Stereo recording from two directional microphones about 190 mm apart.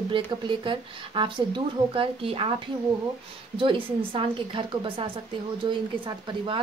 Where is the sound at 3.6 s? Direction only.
25° right (ahead or behind).